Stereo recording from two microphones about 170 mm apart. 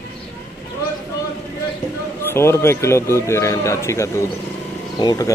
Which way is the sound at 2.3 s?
15° left (ahead or behind).